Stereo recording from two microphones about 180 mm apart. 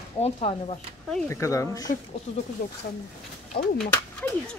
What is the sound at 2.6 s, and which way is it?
Speech, 50° left (ahead or behind).